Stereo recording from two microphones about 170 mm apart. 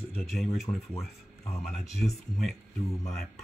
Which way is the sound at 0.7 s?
25° left (ahead or behind).